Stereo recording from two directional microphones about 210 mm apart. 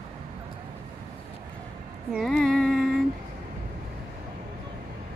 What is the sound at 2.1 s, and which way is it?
Music, centre (ahead or behind).